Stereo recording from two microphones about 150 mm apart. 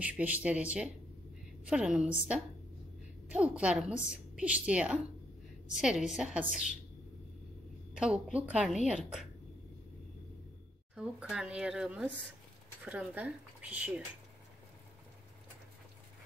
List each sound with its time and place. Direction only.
0.0 s a woman's voice: 10° right (ahead or behind)
6.5 s a woman's voice: 55° left (ahead or behind)
7.9 s a woman's voice: 5° right (ahead or behind)
11.0 s a woman's voice: 5° right (ahead or behind)